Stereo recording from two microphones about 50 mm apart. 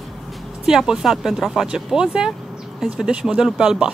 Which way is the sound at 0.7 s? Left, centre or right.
Centre.